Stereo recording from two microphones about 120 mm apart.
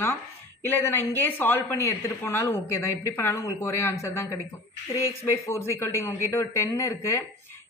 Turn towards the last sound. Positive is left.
turn(degrees=20)  # may be behind; listen again after turning